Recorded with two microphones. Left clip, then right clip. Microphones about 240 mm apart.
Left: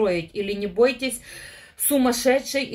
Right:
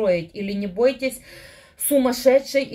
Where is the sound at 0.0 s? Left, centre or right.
Left.